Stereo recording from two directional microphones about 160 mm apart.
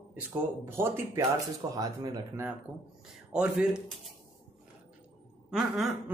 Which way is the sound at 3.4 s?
5° right (ahead or behind).